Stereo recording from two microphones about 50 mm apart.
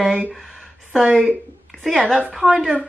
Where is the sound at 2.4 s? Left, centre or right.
Centre.